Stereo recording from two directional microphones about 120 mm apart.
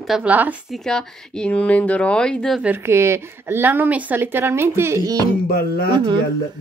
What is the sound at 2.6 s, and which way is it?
A woman's voice, 20° right (ahead or behind).